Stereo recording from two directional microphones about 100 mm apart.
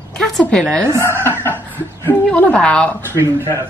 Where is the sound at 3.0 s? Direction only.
30° right (ahead or behind).